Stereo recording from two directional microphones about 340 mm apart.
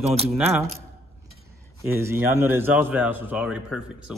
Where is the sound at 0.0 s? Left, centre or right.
Centre.